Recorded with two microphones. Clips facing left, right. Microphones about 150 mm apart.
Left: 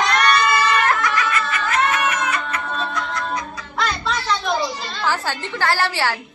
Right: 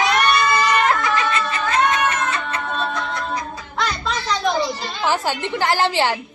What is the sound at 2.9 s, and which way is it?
Music, 25° right (ahead or behind).